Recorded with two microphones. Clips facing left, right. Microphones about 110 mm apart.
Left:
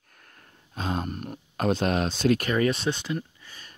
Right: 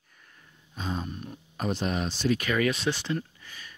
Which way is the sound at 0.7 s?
70° left (ahead or behind).